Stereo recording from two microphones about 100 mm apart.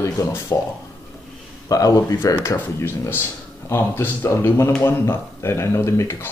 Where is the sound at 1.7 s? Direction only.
35° left (ahead or behind).